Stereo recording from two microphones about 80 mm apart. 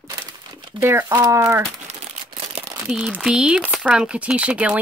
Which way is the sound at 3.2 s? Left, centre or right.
Centre.